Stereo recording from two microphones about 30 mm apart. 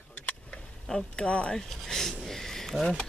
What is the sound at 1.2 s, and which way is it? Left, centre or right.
Speech, left.